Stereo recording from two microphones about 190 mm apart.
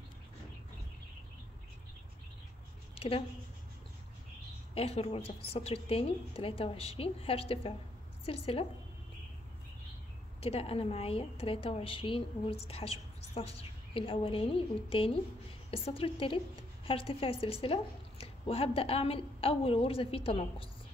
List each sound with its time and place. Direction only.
2.9 s a sound: 30° left (ahead or behind)
4.7 s a woman's voice: 30° left (ahead or behind)
10.4 s speech: 30° left (ahead or behind)